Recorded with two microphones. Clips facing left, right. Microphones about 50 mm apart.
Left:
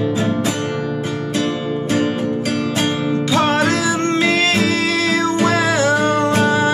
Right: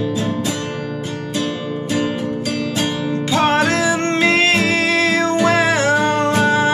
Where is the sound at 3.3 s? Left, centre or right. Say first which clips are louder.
Right 1 dB; right.